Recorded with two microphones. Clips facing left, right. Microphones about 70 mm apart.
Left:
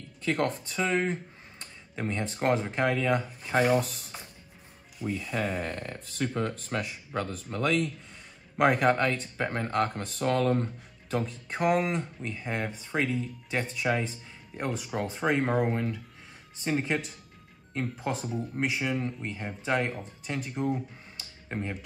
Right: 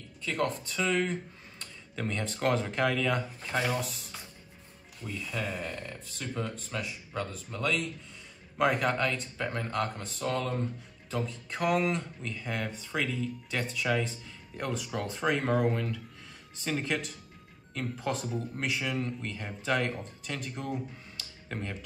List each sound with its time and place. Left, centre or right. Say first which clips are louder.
0.2 s speech: left 3 dB; left
0.7 s speech: left 1 dB; left
3.5 s speech: left 7 dB; left
5.3 s speech: left 2 dB; left
11.5 s speech: left 2 dB; left
18.0 s speech: right 2 dB; centre
21.2 s a sound: left 3 dB; centre